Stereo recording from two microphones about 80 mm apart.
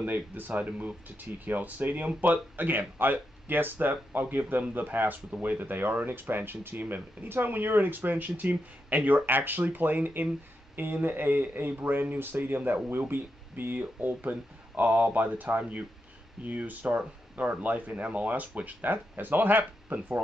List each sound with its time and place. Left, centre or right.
0.0 s speech: right